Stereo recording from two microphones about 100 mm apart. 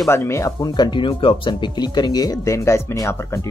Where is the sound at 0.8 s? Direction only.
50° left (ahead or behind); by 3.4 s 25° left (ahead or behind).